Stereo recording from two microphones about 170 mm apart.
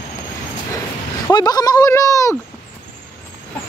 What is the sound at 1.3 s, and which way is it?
Speech, 25° left (ahead or behind).